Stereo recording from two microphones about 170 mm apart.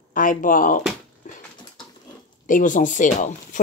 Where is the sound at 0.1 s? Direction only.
55° left (ahead or behind).